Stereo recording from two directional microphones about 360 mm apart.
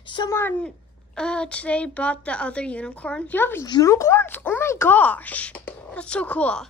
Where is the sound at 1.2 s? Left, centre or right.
Centre.